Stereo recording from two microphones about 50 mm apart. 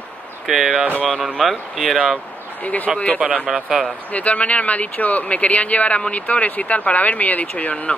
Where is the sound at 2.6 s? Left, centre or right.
Left.